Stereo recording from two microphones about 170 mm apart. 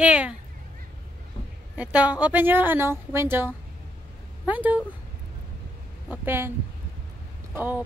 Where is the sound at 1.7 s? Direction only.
10° right (ahead or behind).